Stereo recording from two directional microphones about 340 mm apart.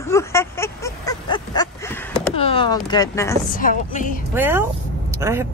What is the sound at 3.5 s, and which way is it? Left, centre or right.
Speech, left.